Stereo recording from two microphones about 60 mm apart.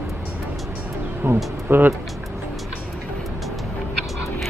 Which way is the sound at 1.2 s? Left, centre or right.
Right.